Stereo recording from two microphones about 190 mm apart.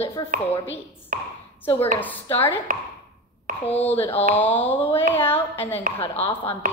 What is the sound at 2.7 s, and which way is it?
Speech, 45° right (ahead or behind).